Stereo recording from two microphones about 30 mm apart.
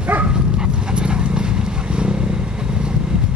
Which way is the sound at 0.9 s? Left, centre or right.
Right.